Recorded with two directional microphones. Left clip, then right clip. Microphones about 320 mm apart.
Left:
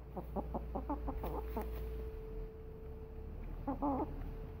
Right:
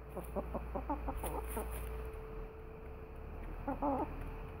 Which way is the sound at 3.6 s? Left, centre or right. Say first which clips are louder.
Right 1 dB; centre.